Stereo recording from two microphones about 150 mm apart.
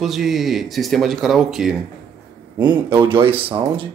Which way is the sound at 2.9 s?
35° right (ahead or behind).